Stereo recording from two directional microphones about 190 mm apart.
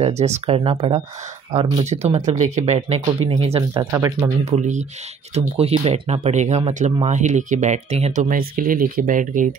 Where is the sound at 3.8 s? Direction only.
20° right (ahead or behind).